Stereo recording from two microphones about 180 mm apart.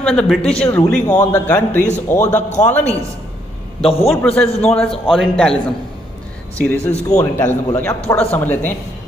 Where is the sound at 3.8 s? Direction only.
30° left (ahead or behind).